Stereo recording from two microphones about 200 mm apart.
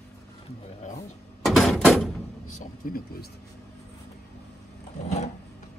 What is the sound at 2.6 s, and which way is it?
Speech, 45° left (ahead or behind).